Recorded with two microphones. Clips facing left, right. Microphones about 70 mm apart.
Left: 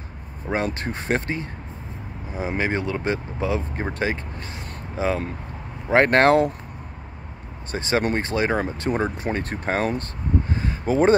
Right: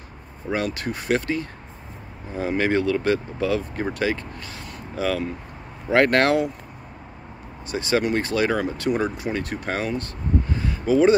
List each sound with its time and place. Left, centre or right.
0.5 s speech: left
2.3 s speech: centre
7.7 s speech: left
10.5 s a sound: left